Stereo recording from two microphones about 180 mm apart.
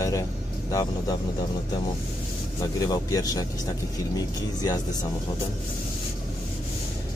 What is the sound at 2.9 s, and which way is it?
Speech, 20° left (ahead or behind).